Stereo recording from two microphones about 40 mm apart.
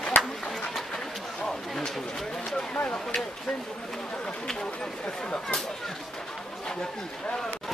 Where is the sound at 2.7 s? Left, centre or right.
Left.